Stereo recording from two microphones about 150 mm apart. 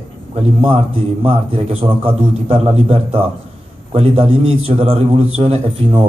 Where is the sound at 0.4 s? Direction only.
40° right (ahead or behind).